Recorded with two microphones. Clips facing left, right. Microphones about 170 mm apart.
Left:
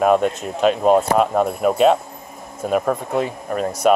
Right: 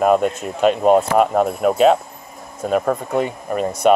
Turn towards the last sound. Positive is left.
turn(degrees=0)  # may be behind; listen again after turning